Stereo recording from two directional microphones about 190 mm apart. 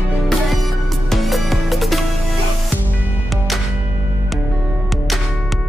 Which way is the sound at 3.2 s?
Centre (ahead or behind).